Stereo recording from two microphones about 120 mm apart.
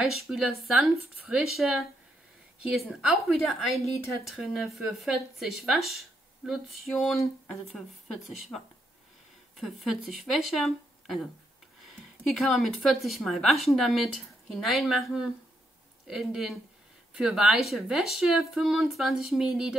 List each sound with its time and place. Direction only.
0.0 s speech: 5° right (ahead or behind)